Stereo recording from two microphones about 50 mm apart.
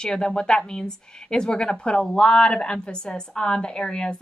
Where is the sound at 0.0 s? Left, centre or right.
Centre.